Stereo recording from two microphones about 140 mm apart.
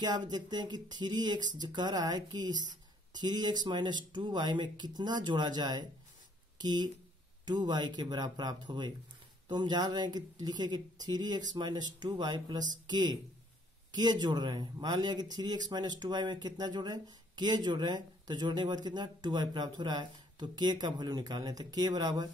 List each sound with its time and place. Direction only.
0.0 s speech: 30° right (ahead or behind)